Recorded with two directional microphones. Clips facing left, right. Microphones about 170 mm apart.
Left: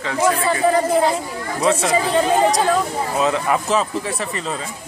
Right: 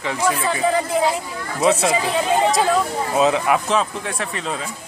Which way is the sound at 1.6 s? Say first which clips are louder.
Even; 5° right (ahead or behind).